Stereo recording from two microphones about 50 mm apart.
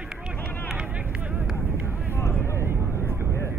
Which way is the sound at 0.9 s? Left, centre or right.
Right.